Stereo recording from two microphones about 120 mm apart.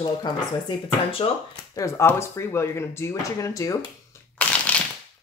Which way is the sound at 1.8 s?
20° left (ahead or behind).